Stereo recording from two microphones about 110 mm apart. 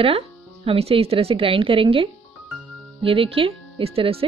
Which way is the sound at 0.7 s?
60° right (ahead or behind).